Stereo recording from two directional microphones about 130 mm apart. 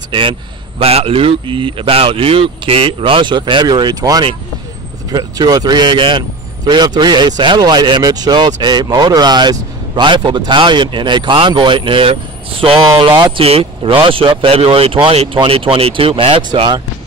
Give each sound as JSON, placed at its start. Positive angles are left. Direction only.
{"t": 0.1, "sound": "speech", "side_deg": -40}